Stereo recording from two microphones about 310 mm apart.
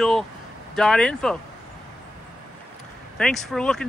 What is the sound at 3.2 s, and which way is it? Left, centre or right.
Speech, centre.